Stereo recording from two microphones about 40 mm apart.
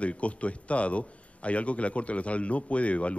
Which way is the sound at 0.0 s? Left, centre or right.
Left.